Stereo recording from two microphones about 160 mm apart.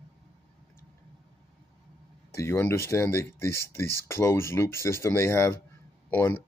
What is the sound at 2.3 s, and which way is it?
Speech, 15° left (ahead or behind).